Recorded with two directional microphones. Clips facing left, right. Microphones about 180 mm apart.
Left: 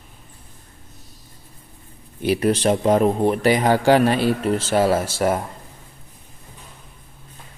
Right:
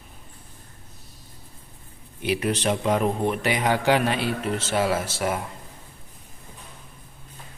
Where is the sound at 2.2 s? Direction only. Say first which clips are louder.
Left 6 dB; 40° left (ahead or behind).